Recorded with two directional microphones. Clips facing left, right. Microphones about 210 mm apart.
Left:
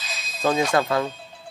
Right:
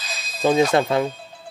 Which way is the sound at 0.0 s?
Centre (ahead or behind).